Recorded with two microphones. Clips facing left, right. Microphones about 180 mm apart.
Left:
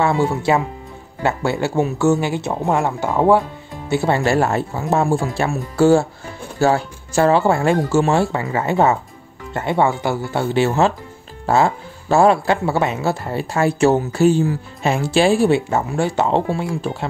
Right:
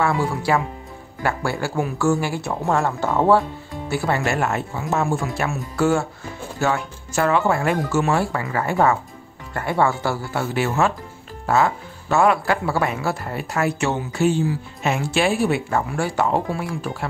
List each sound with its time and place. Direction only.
0.0 s speech: 25° left (ahead or behind)
3.9 s speech: 25° left (ahead or behind); by 14.6 s 45° left (ahead or behind)
14.8 s speech: 35° left (ahead or behind)